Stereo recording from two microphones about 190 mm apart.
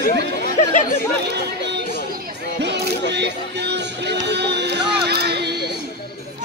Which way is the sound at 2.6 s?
65° right (ahead or behind).